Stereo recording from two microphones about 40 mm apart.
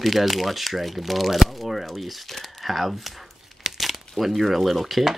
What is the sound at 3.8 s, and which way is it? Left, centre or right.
Speech, centre.